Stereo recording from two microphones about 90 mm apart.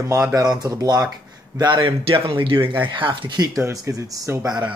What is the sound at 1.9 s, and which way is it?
Speech, 85° right.